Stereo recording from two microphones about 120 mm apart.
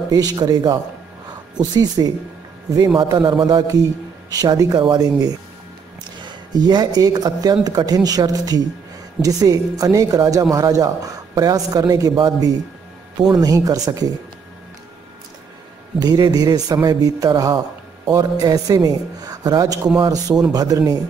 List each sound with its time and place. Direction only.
0.1 s a man's voice: 35° right (ahead or behind)
16.0 s a man's voice: 35° right (ahead or behind)